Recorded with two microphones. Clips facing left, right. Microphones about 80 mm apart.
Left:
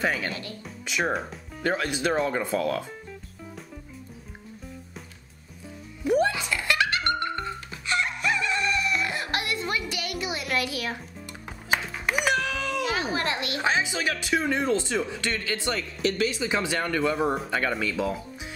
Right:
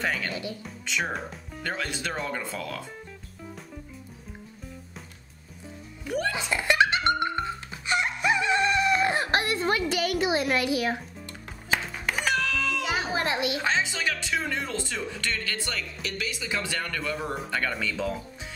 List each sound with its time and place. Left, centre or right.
0.3 s speech: centre
1.0 s speech: centre
1.6 s speech: centre
6.0 s music: left
6.3 s music: right
12.3 s a sound: centre
12.8 s a sound: centre
13.6 s speech: centre
16.0 s speech: left; by 18.5 s centre